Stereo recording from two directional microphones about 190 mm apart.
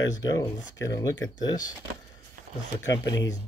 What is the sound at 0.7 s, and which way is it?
Speech, 15° left (ahead or behind).